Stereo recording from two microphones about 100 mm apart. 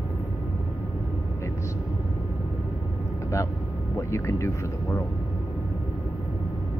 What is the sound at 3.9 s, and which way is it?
Speech, 30° left (ahead or behind).